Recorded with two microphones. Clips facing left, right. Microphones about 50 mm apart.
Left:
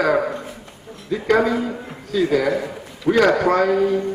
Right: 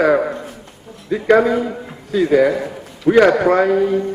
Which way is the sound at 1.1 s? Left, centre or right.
Centre.